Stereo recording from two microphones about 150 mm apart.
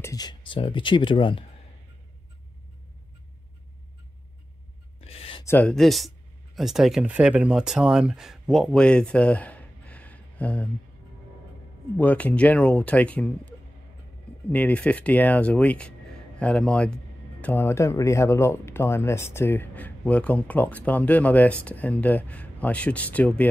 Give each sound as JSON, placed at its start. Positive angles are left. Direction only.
{"t": 0.0, "sound": "speech", "side_deg": 25}
{"t": 5.0, "sound": "a sound", "side_deg": 40}
{"t": 5.4, "sound": "speech", "side_deg": 15}
{"t": 5.7, "sound": "speech", "side_deg": 0}
{"t": 12.0, "sound": "a man's voice", "side_deg": 10}